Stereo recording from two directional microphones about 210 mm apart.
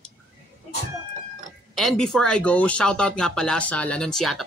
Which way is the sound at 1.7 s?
Centre (ahead or behind).